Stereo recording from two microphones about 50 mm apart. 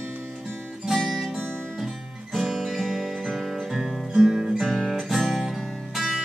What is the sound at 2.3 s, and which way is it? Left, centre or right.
Music, centre.